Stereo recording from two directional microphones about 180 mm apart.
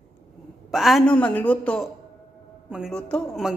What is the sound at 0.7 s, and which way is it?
Speech, centre (ahead or behind).